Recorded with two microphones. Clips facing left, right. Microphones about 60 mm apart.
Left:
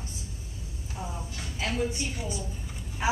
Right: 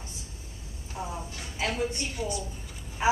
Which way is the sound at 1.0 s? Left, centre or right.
Centre.